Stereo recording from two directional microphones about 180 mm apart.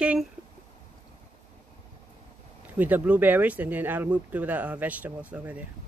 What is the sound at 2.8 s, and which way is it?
Speech, 10° right (ahead or behind).